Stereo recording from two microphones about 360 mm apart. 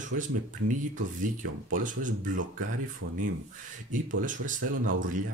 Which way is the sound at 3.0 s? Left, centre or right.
Right.